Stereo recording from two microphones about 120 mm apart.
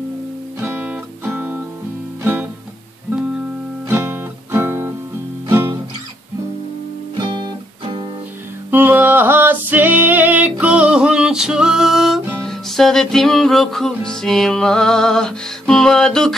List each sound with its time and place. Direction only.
0.6 s guitar: 10° right (ahead or behind)
3.9 s guitar: 20° right (ahead or behind)
5.5 s music: 20° right (ahead or behind)
7.2 s music: 40° right (ahead or behind)
8.6 s music: 15° right (ahead or behind); by 16.3 s 5° left (ahead or behind)